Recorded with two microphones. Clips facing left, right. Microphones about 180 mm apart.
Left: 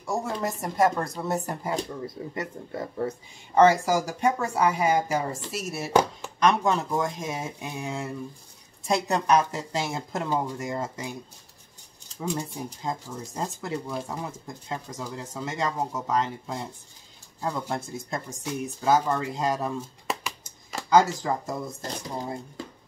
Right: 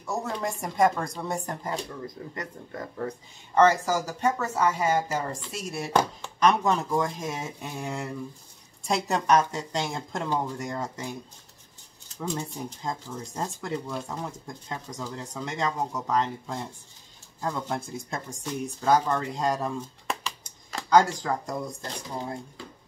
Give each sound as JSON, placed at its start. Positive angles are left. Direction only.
{"t": 0.0, "sound": "speech", "side_deg": 10}
{"t": 2.3, "sound": "speech", "side_deg": 25}
{"t": 3.5, "sound": "speech", "side_deg": 10}
{"t": 12.2, "sound": "speech", "side_deg": 10}
{"t": 20.2, "sound": "a sound", "side_deg": 5}